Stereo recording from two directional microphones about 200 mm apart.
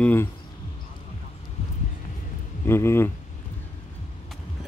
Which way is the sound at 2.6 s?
10° left (ahead or behind).